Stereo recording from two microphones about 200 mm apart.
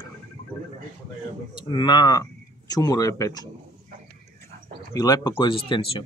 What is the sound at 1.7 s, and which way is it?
Speech, 20° left (ahead or behind).